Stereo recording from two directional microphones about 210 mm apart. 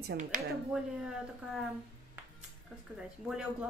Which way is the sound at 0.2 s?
35° right (ahead or behind).